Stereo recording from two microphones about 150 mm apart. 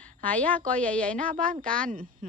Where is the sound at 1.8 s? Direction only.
65° right (ahead or behind).